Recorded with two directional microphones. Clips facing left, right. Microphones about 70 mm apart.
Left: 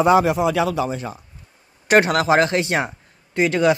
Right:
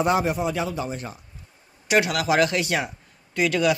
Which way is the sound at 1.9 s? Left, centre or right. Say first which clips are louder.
Left 6 dB; left.